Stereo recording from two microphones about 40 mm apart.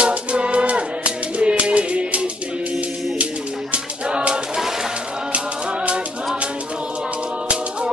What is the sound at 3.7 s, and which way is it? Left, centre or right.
Music, right.